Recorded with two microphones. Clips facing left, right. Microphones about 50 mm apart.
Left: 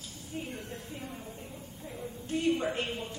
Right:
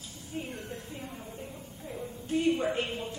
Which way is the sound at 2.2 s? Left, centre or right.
Centre.